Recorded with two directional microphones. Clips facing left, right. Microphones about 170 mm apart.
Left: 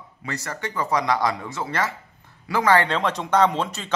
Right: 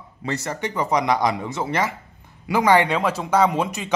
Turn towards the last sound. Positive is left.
turn(degrees=-10)  # may be behind; listen again after turning